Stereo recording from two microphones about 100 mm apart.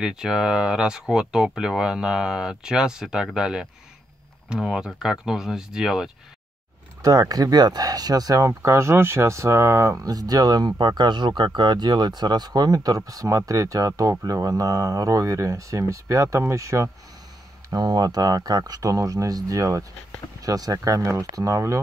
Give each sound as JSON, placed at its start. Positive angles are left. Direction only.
{"t": 0.0, "sound": "speech", "side_deg": -5}
{"t": 7.0, "sound": "speech", "side_deg": -35}
{"t": 17.6, "sound": "speech", "side_deg": -45}